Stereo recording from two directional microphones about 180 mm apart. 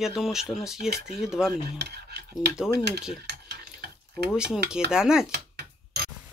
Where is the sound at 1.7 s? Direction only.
65° right (ahead or behind).